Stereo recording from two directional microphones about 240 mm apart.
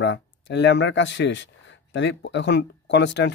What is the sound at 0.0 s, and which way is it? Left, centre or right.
Speech, left.